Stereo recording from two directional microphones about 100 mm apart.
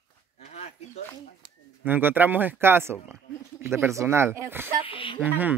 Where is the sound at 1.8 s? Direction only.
20° right (ahead or behind).